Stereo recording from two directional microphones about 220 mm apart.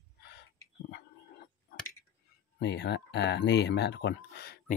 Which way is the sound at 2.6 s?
50° left (ahead or behind).